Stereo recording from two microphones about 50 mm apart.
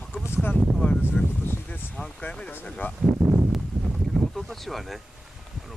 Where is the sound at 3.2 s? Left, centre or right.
Centre.